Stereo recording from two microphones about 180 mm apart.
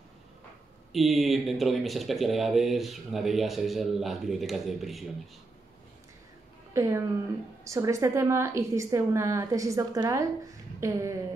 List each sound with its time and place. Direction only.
0.9 s speech: centre (ahead or behind)
6.7 s a woman's voice: 15° right (ahead or behind)